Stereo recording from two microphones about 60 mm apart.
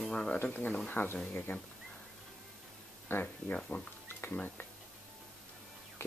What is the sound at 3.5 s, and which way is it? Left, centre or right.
Speech, centre.